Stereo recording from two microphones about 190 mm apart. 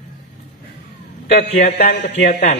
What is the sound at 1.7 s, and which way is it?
Speech, 55° left (ahead or behind).